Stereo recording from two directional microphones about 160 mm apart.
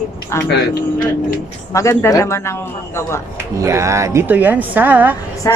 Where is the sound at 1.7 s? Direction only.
20° left (ahead or behind).